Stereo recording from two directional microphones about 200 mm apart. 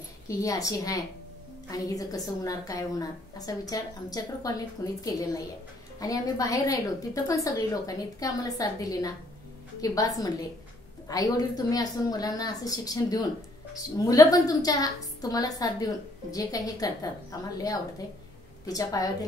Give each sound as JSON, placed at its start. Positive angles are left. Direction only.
{"t": 0.3, "sound": "a woman's voice", "side_deg": 15}
{"t": 18.7, "sound": "a woman's voice", "side_deg": 20}